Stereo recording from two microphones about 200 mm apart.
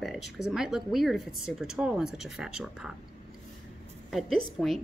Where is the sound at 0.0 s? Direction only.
Centre (ahead or behind).